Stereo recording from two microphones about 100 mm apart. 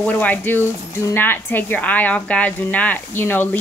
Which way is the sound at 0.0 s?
15° left (ahead or behind).